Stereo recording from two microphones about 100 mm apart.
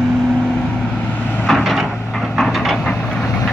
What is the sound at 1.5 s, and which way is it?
Wood, 5° right (ahead or behind).